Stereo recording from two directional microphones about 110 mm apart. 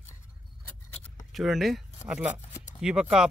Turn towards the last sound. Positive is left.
turn(degrees=-5)  # may be behind; listen again after turning